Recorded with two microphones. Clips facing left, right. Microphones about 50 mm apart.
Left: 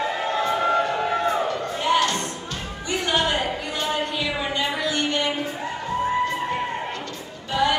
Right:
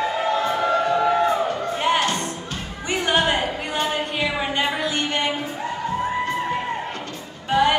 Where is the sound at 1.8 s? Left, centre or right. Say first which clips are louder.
Even; right.